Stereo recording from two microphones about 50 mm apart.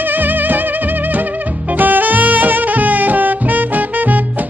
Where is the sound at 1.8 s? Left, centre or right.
Right.